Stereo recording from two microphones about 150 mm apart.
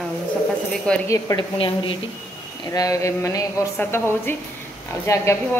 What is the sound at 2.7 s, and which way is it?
A woman's voice, 25° left (ahead or behind).